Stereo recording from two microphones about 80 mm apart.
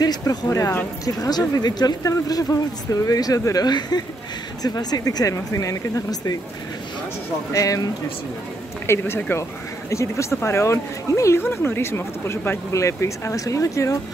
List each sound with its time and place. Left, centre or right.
0.0 s speech: left
7.5 s speech: left
8.8 s speech: left